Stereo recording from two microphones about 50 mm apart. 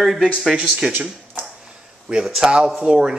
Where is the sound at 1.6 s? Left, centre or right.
Centre.